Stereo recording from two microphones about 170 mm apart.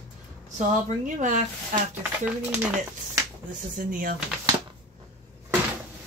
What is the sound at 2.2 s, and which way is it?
Speech, 5° right (ahead or behind).